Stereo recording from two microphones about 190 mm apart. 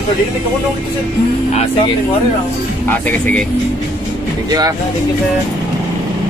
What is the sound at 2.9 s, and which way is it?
Speech, 10° left (ahead or behind).